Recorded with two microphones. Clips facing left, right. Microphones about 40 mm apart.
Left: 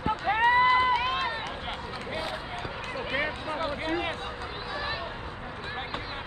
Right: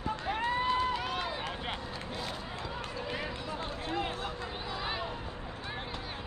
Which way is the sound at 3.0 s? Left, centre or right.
Left.